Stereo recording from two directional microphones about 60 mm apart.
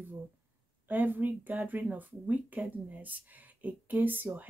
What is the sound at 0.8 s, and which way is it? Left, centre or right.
Speech, right.